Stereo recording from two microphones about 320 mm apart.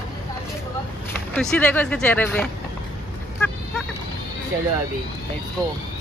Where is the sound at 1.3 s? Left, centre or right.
Centre.